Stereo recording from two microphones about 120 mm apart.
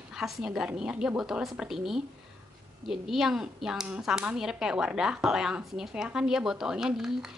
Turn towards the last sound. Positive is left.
turn(degrees=-5)  # may be behind; listen again after turning